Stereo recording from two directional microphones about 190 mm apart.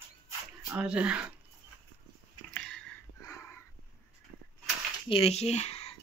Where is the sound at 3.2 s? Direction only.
15° left (ahead or behind).